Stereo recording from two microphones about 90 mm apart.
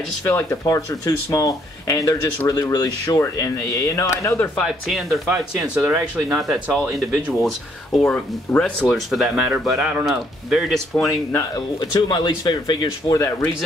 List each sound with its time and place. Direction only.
0.2 s speech: 25° left (ahead or behind)
0.7 s speech: 40° left (ahead or behind)
4.6 s speech: centre (ahead or behind)
5.8 s speech: 20° right (ahead or behind)
6.3 s speech: 5° right (ahead or behind)
8.0 s speech: 15° left (ahead or behind); by 10.0 s 10° right (ahead or behind)
10.0 s speech: centre (ahead or behind)
11.5 s speech: 50° left (ahead or behind)
13.0 s speech: 65° left (ahead or behind)